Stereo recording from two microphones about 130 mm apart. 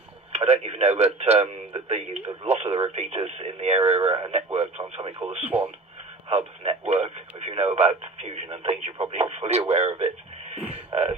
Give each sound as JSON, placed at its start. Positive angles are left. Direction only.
{"t": 0.3, "sound": "speech", "side_deg": -55}
{"t": 5.5, "sound": "speech", "side_deg": -15}
{"t": 6.2, "sound": "speech", "side_deg": -50}